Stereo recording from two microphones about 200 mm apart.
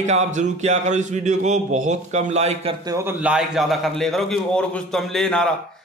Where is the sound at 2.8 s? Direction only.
15° right (ahead or behind).